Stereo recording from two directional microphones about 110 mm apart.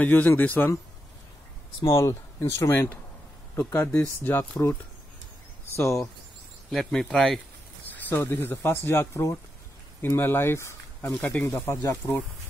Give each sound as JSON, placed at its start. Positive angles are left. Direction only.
{"t": 0.0, "sound": "speech", "side_deg": 15}
{"t": 1.8, "sound": "speech", "side_deg": 30}
{"t": 5.8, "sound": "speech", "side_deg": 25}
{"t": 6.7, "sound": "speech", "side_deg": 5}
{"t": 7.9, "sound": "speech", "side_deg": 20}